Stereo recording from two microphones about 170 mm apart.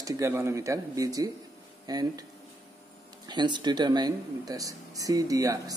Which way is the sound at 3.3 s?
25° right (ahead or behind).